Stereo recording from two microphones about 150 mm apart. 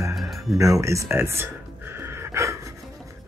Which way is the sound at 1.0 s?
15° right (ahead or behind).